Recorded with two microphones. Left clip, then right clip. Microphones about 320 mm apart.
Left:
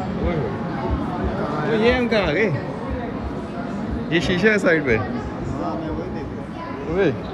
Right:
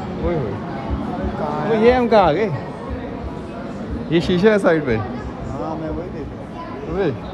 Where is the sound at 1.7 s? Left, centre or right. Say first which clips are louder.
Right 5 dB; centre.